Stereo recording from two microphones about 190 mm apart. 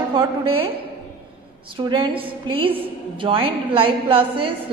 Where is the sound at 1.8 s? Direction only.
25° right (ahead or behind).